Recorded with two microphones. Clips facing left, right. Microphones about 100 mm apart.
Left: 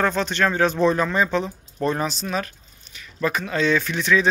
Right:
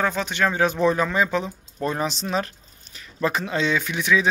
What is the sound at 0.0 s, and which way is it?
Speech, 10° right (ahead or behind).